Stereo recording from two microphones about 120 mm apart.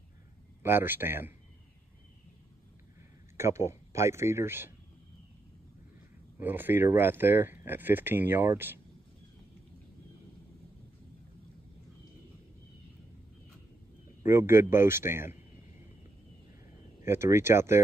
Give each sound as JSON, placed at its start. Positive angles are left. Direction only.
{"t": 0.6, "sound": "speech", "side_deg": -20}
{"t": 3.3, "sound": "speech", "side_deg": -25}
{"t": 6.4, "sound": "speech", "side_deg": -15}
{"t": 14.2, "sound": "speech", "side_deg": -20}
{"t": 17.0, "sound": "speech", "side_deg": -20}